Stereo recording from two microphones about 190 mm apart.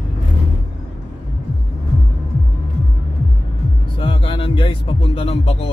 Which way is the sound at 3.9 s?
30° left (ahead or behind).